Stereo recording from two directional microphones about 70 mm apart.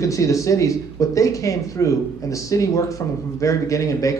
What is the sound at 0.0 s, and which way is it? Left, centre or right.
Speech, left.